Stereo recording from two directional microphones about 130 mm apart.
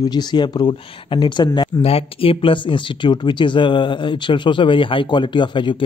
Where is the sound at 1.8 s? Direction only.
45° left (ahead or behind).